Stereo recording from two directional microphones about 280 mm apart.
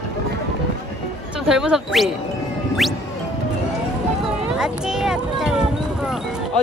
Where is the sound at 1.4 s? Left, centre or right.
Centre.